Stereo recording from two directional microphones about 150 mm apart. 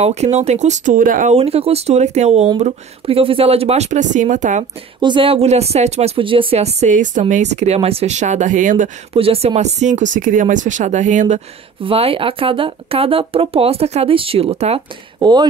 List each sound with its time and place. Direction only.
0.0 s speech: 45° right (ahead or behind); by 1.3 s 65° right (ahead or behind)
1.3 s speech: 40° right (ahead or behind)
5.0 s speech: 35° right (ahead or behind); by 8.9 s 60° right (ahead or behind)
9.1 s speech: 40° right (ahead or behind)
11.8 s speech: 40° right (ahead or behind)
15.1 s speech: 30° right (ahead or behind)